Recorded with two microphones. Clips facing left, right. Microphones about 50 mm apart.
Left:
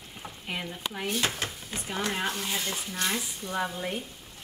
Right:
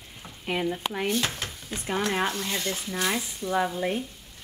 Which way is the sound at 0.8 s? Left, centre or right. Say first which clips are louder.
Right 5 dB; right.